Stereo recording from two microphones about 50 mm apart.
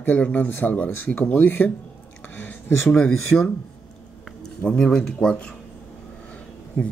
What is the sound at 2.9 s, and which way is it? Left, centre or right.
Speech, centre.